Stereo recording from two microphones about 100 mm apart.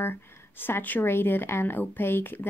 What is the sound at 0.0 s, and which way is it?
Speech, 20° left (ahead or behind).